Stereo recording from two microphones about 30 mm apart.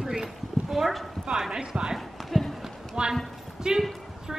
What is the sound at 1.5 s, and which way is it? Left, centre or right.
Speech, right.